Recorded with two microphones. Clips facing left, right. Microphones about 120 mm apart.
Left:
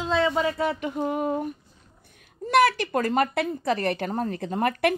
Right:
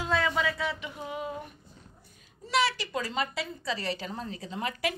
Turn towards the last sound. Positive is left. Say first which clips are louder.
# left 9 dB
turn(degrees=55)  # may be behind; listen again after turning